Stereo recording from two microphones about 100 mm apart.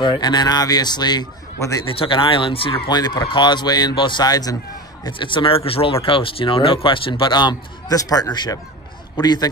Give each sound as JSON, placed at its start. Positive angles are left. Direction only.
{"t": 0.0, "sound": "speech", "side_deg": 45}
{"t": 1.9, "sound": "speech", "side_deg": 60}
{"t": 2.9, "sound": "speech", "side_deg": 45}
{"t": 5.0, "sound": "speech", "side_deg": 55}
{"t": 5.7, "sound": "speech", "side_deg": 70}
{"t": 7.9, "sound": "a man's voice", "side_deg": 40}